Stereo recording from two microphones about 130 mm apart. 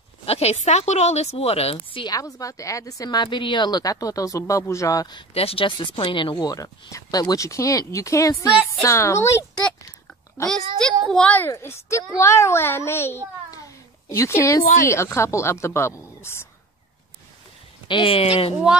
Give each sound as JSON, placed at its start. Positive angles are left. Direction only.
{"t": 0.2, "sound": "speech", "side_deg": 50}
{"t": 2.0, "sound": "speech", "side_deg": 25}
{"t": 5.3, "sound": "speech", "side_deg": 50}
{"t": 11.1, "sound": "speech", "side_deg": 10}
{"t": 13.5, "sound": "a sound", "side_deg": 25}
{"t": 14.6, "sound": "a woman's voice", "side_deg": 90}
{"t": 14.9, "sound": "speech", "side_deg": 20}
{"t": 17.8, "sound": "speech", "side_deg": 40}